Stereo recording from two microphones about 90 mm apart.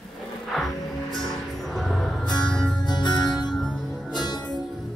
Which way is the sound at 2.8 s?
55° left (ahead or behind).